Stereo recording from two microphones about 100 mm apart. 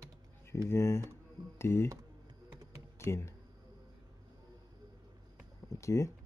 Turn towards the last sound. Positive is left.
turn(degrees=30)  # may be behind; listen again after turning